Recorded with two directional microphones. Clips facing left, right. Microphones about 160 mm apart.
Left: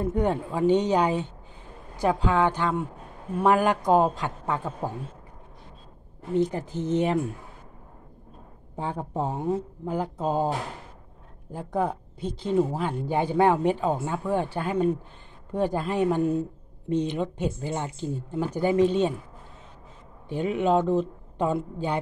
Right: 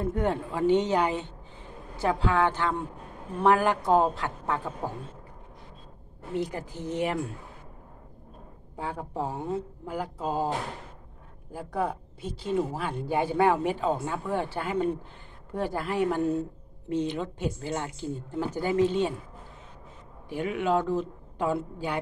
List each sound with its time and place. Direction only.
0.0 s a woman's voice: 15° left (ahead or behind)
6.5 s speech: 20° left (ahead or behind)
8.7 s speech: 20° left (ahead or behind)
11.5 s a woman's voice: 20° left (ahead or behind)
20.2 s speech: 20° left (ahead or behind)